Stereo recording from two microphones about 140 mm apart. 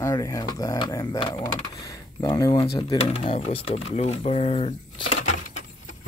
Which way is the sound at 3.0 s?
45° left (ahead or behind).